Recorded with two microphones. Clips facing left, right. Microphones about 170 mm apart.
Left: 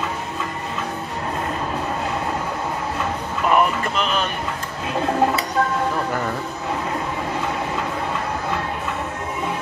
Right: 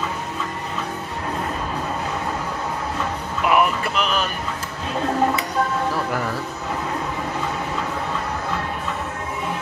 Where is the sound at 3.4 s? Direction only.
5° right (ahead or behind).